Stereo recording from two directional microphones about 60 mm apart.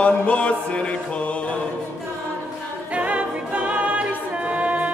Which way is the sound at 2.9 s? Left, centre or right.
Right.